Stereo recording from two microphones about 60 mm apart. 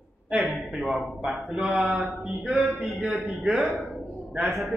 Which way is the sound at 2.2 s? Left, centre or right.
Centre.